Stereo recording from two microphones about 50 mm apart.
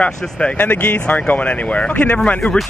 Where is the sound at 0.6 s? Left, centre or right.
Left.